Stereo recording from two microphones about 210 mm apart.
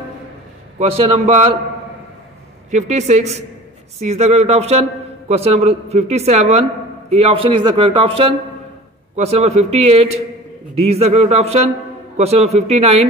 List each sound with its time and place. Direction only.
0.7 s a man's voice: 30° right (ahead or behind)
2.7 s a man's voice: 35° right (ahead or behind)